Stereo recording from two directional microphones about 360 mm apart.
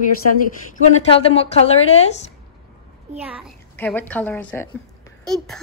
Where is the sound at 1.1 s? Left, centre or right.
Centre.